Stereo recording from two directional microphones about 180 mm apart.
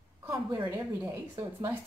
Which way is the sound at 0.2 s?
20° right (ahead or behind).